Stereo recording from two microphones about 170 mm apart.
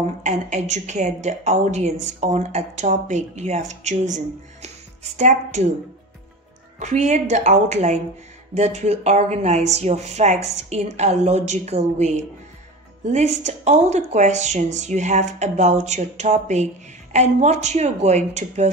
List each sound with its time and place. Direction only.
0.2 s speech: 45° right (ahead or behind)
6.8 s speech: 45° right (ahead or behind)